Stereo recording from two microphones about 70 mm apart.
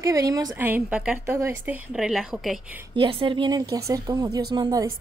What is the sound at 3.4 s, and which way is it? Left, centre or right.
Speech, right.